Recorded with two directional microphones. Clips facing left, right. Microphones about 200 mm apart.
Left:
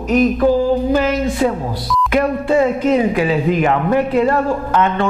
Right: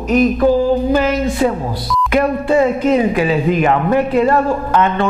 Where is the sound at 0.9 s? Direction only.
15° right (ahead or behind).